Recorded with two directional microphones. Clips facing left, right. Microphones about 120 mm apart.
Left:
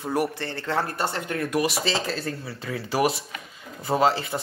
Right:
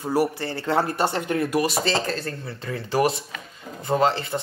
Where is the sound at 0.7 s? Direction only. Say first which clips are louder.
Right 4 dB; 25° right (ahead or behind).